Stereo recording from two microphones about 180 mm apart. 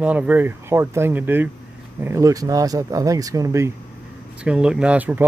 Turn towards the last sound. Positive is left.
turn(degrees=-10)  # may be behind; listen again after turning